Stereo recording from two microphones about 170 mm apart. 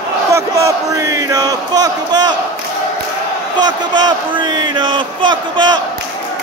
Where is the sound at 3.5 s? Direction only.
25° right (ahead or behind).